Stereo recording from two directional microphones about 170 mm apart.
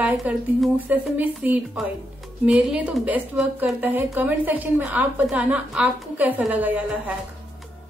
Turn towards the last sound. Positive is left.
turn(degrees=-10)  # may be behind; listen again after turning